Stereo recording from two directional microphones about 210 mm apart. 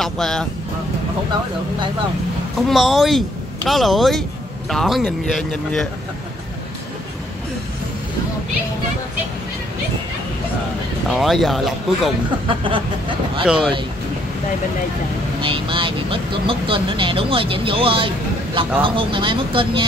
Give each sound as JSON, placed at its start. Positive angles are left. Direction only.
{"t": 0.0, "sound": "a man's voice", "side_deg": 0}
{"t": 2.5, "sound": "a man's voice", "side_deg": 0}
{"t": 11.1, "sound": "a man's voice", "side_deg": 0}
{"t": 12.4, "sound": "speech", "side_deg": -25}
{"t": 13.5, "sound": "a man's voice", "side_deg": 0}
{"t": 15.4, "sound": "speech", "side_deg": -25}